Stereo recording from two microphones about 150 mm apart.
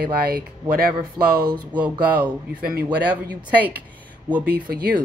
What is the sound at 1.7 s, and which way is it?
Speech, 10° right (ahead or behind).